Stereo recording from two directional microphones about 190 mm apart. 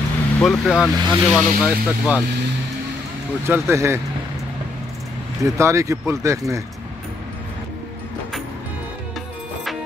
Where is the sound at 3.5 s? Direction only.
15° right (ahead or behind).